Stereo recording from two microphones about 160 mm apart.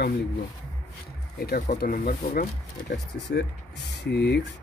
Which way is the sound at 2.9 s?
90° left.